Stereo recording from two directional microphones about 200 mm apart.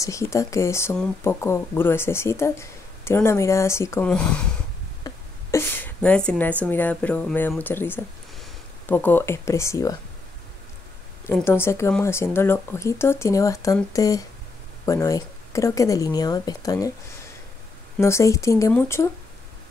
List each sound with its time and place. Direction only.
0.0 s speech: 15° left (ahead or behind)
5.0 s a sound: 15° left (ahead or behind)
6.6 s speech: 10° left (ahead or behind)
11.2 s speech: 10° left (ahead or behind)
17.9 s speech: 15° left (ahead or behind)